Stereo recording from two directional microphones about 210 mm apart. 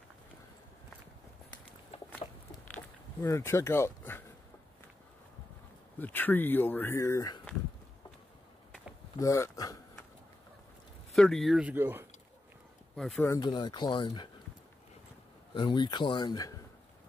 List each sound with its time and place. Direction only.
2.7 s a sound: 15° left (ahead or behind)
5.9 s speech: 10° left (ahead or behind)
9.2 s speech: 15° left (ahead or behind)
11.1 s speech: centre (ahead or behind)
12.9 s speech: centre (ahead or behind)
13.3 s speech: 20° left (ahead or behind)
15.5 s speech: 20° left (ahead or behind)